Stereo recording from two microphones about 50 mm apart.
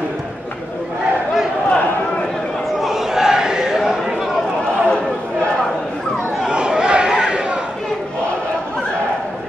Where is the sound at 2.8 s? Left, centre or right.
Centre.